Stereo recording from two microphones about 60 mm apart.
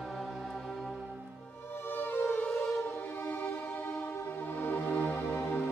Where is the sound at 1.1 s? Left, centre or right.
Right.